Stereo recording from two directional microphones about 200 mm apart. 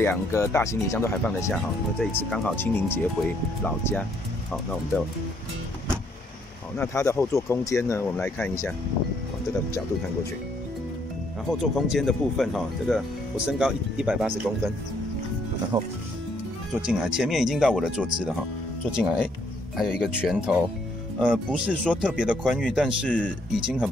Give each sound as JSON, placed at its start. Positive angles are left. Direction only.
{"t": 0.0, "sound": "speech", "side_deg": 15}
{"t": 6.8, "sound": "speech", "side_deg": 15}
{"t": 11.5, "sound": "speech", "side_deg": 0}
{"t": 15.7, "sound": "speech", "side_deg": -20}
{"t": 16.8, "sound": "speech", "side_deg": 0}